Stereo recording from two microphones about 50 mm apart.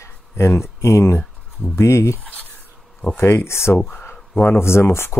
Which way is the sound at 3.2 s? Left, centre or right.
Left.